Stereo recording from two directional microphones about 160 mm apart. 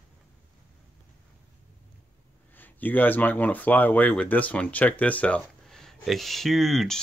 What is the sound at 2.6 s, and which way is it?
Speech, 10° left (ahead or behind).